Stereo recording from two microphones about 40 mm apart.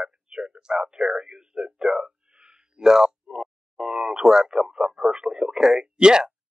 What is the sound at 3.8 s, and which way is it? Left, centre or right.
Speech, centre.